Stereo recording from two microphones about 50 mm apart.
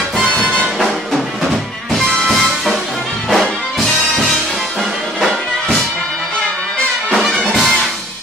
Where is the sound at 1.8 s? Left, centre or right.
Centre.